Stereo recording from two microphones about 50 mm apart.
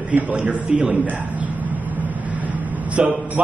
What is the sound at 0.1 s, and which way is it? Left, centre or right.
Speech, right.